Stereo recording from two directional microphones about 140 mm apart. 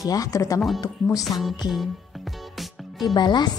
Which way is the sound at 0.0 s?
25° left (ahead or behind).